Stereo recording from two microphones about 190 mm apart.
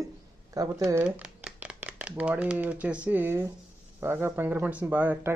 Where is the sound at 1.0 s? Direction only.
5° right (ahead or behind).